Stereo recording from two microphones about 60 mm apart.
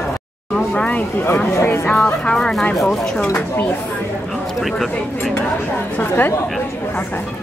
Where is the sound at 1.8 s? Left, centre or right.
Left.